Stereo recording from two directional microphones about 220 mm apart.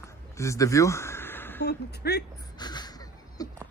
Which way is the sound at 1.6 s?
50° left (ahead or behind).